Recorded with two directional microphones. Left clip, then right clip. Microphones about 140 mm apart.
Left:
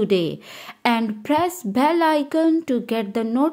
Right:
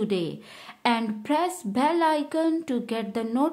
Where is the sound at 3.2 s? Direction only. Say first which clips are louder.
Left 3 dB; 15° left (ahead or behind).